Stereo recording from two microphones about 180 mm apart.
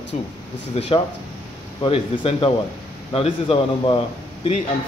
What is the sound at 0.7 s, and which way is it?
Speech, 35° left (ahead or behind).